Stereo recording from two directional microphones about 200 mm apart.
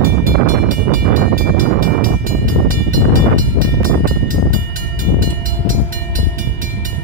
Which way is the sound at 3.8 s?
45° right (ahead or behind).